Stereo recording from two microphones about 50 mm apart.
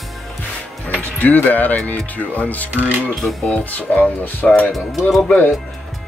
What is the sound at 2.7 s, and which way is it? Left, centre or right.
Speech, right.